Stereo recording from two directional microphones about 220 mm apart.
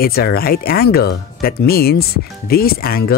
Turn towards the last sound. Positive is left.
turn(degrees=45)  # may be behind; listen again after turning